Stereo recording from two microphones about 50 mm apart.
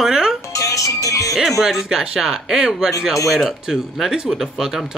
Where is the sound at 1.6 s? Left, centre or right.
Centre.